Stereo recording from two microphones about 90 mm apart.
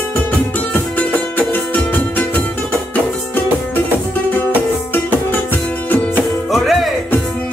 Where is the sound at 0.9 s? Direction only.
20° left (ahead or behind).